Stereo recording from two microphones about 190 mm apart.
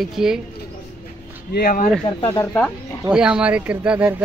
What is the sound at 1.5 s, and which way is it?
Speech, 50° left (ahead or behind).